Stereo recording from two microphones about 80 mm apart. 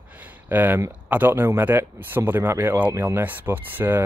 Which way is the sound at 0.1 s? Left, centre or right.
Centre.